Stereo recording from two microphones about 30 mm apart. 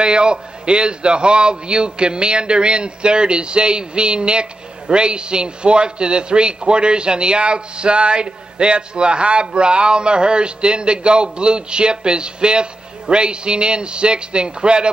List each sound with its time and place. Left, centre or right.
0.0 s a man's voice: right